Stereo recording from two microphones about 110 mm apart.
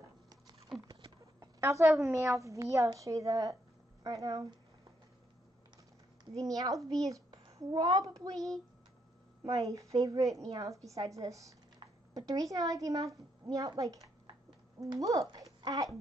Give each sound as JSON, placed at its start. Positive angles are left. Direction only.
{"t": 1.4, "sound": "a woman's voice", "side_deg": -25}
{"t": 6.3, "sound": "a woman's voice", "side_deg": -35}